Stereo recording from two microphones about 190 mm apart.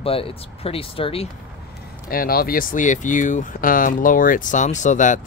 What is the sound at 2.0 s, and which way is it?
Speech, 50° left (ahead or behind).